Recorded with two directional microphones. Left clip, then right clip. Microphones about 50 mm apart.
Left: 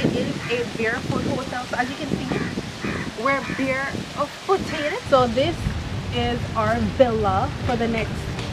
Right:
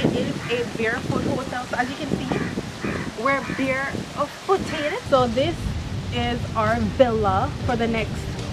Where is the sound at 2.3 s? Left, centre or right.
Centre.